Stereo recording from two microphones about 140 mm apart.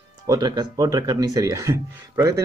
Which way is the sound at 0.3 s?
30° right (ahead or behind).